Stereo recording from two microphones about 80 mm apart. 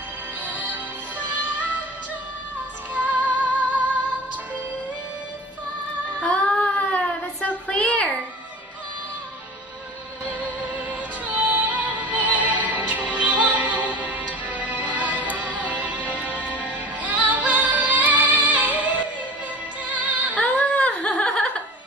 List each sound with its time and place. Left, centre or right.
0.5 s music: centre
2.9 s music: centre
6.2 s child singing: centre
10.4 s music: centre
20.3 s a sound: centre